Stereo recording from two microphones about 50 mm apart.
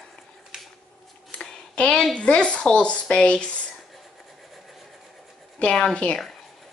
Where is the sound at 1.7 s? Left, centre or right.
Left.